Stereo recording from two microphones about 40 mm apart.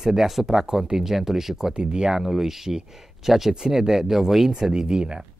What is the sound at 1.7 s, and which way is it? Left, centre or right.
Speech, right.